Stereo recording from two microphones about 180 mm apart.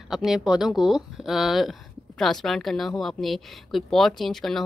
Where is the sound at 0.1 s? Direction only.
Centre (ahead or behind).